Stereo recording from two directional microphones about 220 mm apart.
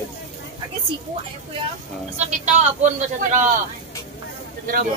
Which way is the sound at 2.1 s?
30° right (ahead or behind).